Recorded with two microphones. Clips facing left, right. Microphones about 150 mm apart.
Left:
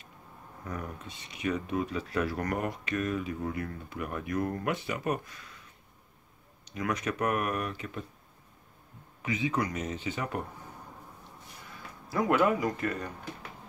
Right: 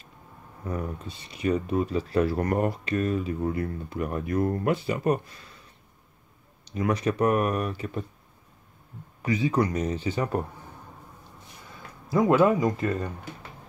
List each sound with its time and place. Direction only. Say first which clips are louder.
0.7 s speech: right 6 dB; 30° right (ahead or behind)
6.6 s speech: right 6 dB; 30° right (ahead or behind)
9.2 s speech: right 6 dB; 35° right (ahead or behind)
12.1 s speech: right 6 dB; 25° right (ahead or behind)